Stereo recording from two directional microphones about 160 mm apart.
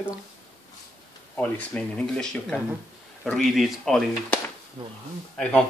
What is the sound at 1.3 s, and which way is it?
Speech, 10° left (ahead or behind).